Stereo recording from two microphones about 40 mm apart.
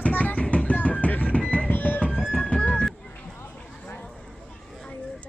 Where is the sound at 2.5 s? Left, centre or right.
Left.